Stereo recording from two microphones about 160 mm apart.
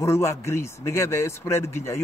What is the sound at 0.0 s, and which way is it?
A man's voice, 20° left (ahead or behind).